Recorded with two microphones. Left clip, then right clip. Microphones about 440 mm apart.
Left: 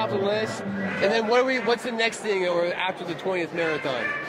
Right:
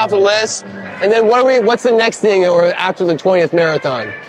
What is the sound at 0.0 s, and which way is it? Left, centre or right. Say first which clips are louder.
Speech: right 13 dB; right.